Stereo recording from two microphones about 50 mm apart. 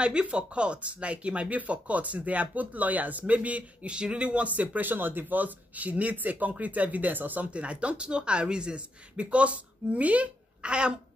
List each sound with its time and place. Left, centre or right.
0.0 s speech: right
4.6 s speech: right
7.5 s speech: right